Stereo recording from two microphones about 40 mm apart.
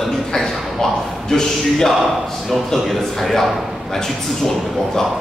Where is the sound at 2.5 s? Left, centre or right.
Centre.